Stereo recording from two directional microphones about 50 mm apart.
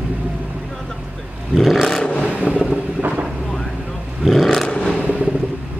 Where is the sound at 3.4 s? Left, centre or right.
Centre.